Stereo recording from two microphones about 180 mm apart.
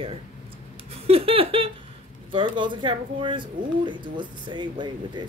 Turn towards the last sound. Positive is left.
turn(degrees=-25)  # may be behind; listen again after turning